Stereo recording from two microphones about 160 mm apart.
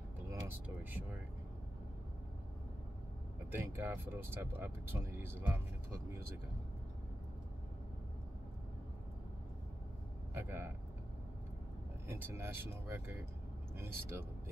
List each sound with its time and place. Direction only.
0.3 s vehicle: 10° right (ahead or behind)
3.5 s speech: 10° right (ahead or behind)
10.3 s speech: 15° right (ahead or behind)
12.1 s speech: 15° right (ahead or behind)